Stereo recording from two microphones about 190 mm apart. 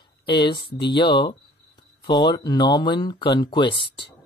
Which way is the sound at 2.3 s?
20° left (ahead or behind).